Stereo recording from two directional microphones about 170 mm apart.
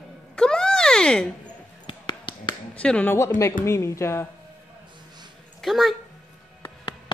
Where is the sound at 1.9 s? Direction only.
30° left (ahead or behind).